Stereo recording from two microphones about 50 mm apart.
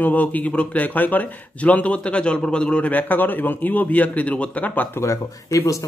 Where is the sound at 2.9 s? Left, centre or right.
Left.